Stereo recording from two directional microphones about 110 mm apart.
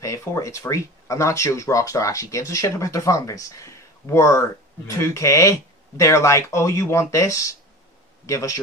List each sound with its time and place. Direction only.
0.0 s speech: 25° left (ahead or behind)